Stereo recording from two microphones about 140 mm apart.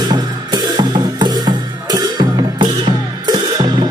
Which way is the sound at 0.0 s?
30° right (ahead or behind).